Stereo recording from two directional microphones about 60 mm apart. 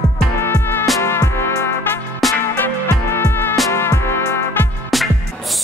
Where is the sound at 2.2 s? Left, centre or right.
Centre.